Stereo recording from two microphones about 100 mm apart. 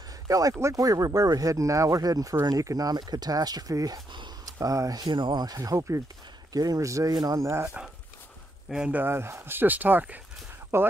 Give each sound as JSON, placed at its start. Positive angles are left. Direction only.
{"t": 0.3, "sound": "speech", "side_deg": -35}
{"t": 4.6, "sound": "speech", "side_deg": -35}
{"t": 8.6, "sound": "speech", "side_deg": -10}
{"t": 9.0, "sound": "speech", "side_deg": -25}